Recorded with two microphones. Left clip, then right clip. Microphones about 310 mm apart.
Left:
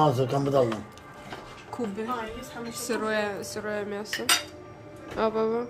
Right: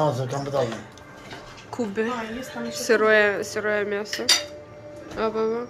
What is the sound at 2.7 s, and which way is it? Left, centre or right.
Speech, centre.